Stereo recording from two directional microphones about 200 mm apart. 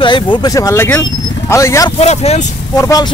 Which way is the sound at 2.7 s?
20° left (ahead or behind).